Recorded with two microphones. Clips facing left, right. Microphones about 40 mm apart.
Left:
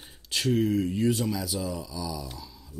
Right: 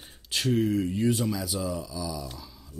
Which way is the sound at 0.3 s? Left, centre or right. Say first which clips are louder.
Even; centre.